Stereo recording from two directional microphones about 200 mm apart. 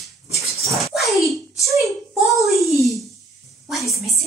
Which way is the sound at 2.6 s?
Centre (ahead or behind).